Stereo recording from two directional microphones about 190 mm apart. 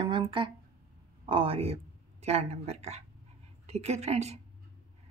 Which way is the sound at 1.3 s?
30° right (ahead or behind).